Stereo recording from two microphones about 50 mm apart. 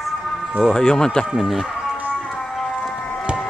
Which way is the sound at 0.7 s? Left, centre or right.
Centre.